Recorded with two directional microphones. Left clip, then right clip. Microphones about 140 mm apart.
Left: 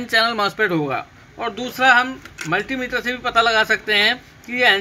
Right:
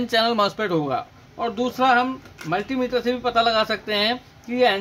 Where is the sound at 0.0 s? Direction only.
50° right (ahead or behind).